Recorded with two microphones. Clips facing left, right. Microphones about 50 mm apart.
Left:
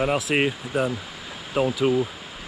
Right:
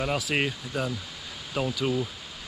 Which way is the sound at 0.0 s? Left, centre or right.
Centre.